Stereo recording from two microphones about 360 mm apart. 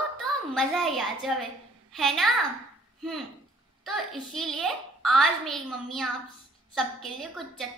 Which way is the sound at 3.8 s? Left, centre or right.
Centre.